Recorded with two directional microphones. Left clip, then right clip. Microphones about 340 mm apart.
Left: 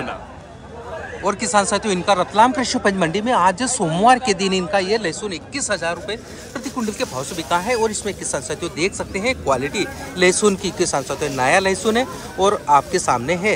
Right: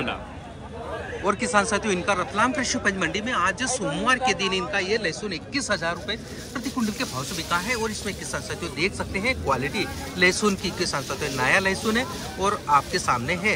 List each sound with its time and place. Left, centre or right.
1.2 s speech: centre